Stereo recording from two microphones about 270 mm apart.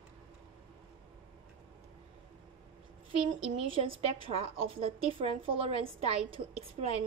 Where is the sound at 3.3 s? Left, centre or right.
Centre.